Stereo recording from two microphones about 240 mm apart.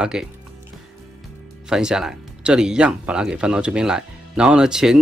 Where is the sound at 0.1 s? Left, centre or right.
Centre.